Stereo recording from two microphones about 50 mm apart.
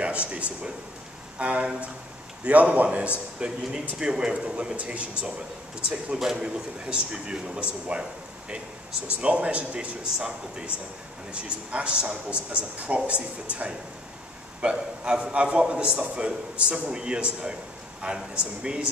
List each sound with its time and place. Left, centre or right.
0.0 s a man's voice: right
3.3 s a man's voice: centre
6.1 s a man's voice: centre
9.0 s a man's voice: right